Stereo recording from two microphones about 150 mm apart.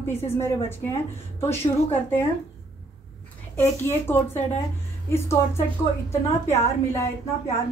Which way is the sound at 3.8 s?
15° left (ahead or behind).